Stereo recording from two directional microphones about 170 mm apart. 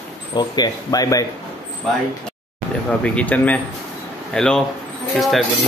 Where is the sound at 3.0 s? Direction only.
10° left (ahead or behind).